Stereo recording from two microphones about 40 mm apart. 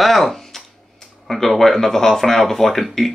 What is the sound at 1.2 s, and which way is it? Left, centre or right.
Speech, centre.